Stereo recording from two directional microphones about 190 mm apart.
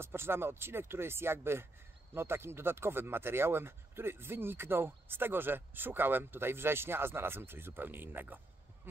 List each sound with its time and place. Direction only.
0.0 s speech: 10° right (ahead or behind)